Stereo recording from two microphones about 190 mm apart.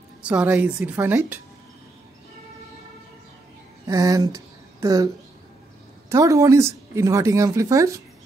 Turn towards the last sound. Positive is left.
turn(degrees=-15)  # may be behind; listen again after turning